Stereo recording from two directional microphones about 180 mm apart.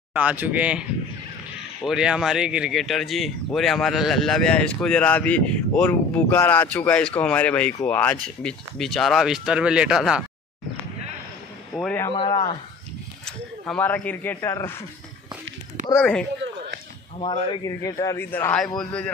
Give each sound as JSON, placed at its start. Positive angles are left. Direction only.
{"t": 0.1, "sound": "speech", "side_deg": -10}
{"t": 11.7, "sound": "speech", "side_deg": 5}
{"t": 12.1, "sound": "a man's voice", "side_deg": 25}
{"t": 13.2, "sound": "speech", "side_deg": 5}
{"t": 15.9, "sound": "a man's voice", "side_deg": 5}
{"t": 17.2, "sound": "a man's voice", "side_deg": 25}